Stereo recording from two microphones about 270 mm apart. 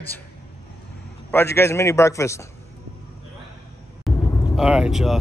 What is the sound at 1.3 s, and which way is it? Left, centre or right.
A man's voice, centre.